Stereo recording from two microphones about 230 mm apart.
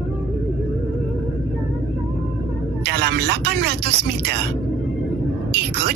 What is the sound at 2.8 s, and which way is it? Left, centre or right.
Speech, right.